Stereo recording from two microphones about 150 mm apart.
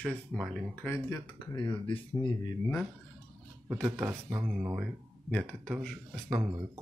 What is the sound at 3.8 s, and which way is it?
Speech, 20° right (ahead or behind).